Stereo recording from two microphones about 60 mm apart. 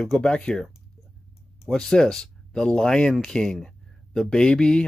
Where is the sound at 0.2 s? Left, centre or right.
Centre.